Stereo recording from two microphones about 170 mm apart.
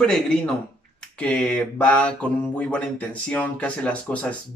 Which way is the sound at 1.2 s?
5° left (ahead or behind).